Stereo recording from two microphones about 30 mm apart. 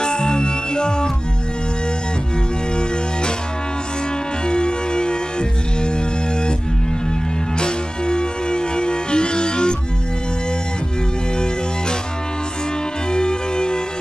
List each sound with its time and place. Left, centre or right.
0.0 s music: left
2.7 s music: left
4.5 s music: left
7.5 s music: left
13.1 s music: left